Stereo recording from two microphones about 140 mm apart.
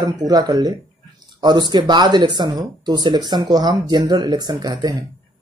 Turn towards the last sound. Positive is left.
turn(degrees=-30)  # may be behind; listen again after turning